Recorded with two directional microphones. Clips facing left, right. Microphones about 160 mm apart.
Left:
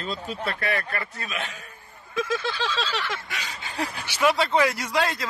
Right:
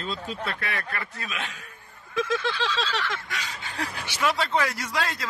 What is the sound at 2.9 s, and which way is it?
A man's voice, 10° left (ahead or behind).